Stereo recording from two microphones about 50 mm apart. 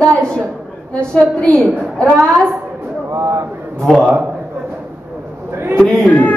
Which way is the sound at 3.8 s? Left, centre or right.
Centre.